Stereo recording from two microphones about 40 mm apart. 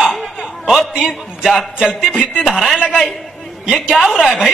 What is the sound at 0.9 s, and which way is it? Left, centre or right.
A woman's voice, centre.